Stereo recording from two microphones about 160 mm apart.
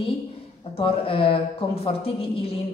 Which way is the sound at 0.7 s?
35° left (ahead or behind).